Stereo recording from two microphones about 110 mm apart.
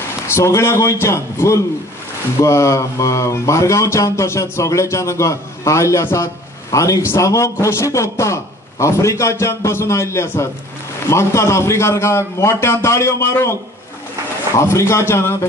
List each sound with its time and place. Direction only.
0.3 s speech: 25° left (ahead or behind)